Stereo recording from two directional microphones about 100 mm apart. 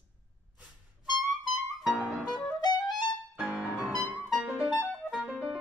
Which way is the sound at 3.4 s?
10° right (ahead or behind).